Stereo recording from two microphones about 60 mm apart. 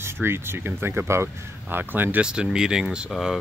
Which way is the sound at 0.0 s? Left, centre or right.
Right.